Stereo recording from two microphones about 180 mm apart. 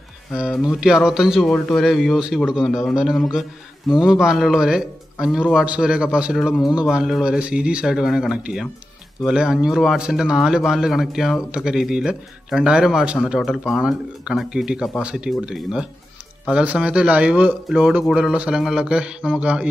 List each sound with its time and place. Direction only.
0.3 s speech: centre (ahead or behind)